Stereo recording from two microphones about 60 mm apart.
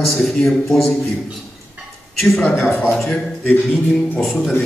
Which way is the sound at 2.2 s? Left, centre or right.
Centre.